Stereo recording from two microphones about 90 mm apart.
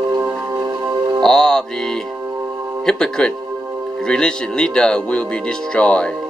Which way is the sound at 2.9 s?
10° left (ahead or behind).